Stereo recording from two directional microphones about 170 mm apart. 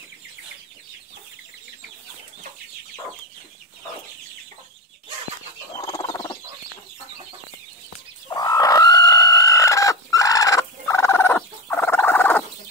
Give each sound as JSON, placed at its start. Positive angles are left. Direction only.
{"t": 5.8, "sound": "fowl", "side_deg": 20}
{"t": 8.3, "sound": "chicken", "side_deg": 25}